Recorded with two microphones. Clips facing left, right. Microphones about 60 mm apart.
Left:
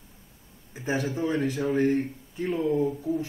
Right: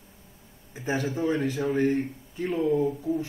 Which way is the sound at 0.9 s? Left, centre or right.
Right.